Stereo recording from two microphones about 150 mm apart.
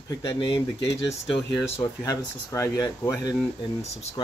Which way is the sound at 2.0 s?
20° left (ahead or behind).